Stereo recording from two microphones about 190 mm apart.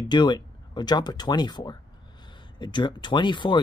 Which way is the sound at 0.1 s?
25° left (ahead or behind).